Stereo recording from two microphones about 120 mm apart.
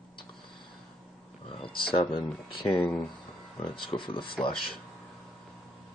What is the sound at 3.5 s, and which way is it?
Speech, 45° left (ahead or behind).